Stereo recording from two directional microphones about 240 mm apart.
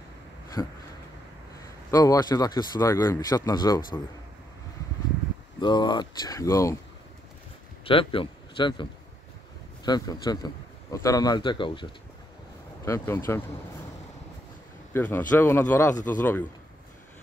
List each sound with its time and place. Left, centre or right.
0.6 s speech: centre
1.9 s speech: centre
5.6 s speech: centre
7.8 s speech: left
9.8 s speech: centre
15.0 s speech: centre
15.9 s speech: left
16.2 s speech: centre